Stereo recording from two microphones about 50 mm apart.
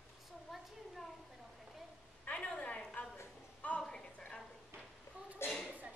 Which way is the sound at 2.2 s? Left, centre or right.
Left.